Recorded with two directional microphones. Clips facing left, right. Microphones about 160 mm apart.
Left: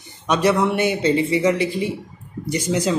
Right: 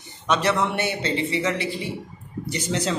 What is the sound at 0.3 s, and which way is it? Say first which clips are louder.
Speech: left 4 dB; 10° left (ahead or behind).